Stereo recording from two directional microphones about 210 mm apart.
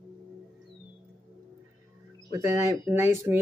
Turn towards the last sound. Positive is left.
turn(degrees=-15)  # may be behind; listen again after turning